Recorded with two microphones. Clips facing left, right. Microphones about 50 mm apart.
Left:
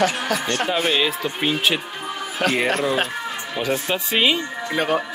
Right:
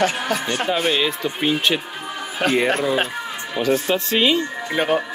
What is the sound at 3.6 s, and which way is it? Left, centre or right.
Speech, centre.